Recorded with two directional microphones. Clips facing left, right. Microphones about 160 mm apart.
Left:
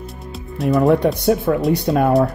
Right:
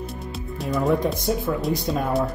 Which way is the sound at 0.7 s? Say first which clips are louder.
Left 7 dB; 70° left (ahead or behind).